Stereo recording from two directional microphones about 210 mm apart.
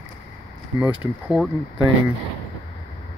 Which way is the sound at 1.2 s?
Centre (ahead or behind).